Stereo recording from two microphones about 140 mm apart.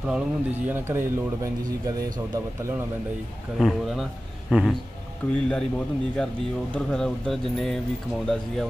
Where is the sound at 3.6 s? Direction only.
Centre (ahead or behind).